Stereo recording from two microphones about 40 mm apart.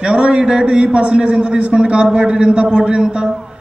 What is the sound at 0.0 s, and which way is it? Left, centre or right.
A man's voice, right.